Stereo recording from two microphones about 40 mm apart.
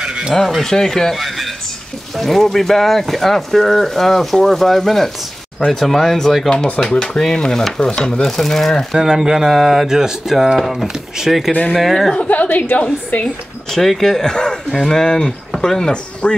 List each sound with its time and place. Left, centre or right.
0.7 s speech: centre
6.5 s speech: centre
8.9 s speech: centre
9.5 s speech: centre
12.2 s a woman's voice: left
13.7 s speech: centre
16.2 s speech: left